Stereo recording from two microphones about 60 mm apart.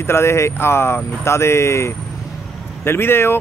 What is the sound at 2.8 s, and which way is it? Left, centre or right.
Speech, left.